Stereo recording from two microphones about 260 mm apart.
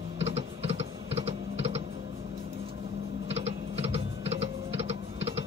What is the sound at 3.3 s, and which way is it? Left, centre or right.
Typing, right.